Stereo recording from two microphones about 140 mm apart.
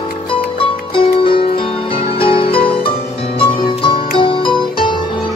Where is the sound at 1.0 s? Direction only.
40° left (ahead or behind).